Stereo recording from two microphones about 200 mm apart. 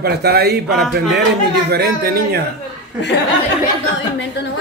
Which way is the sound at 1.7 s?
50° right (ahead or behind).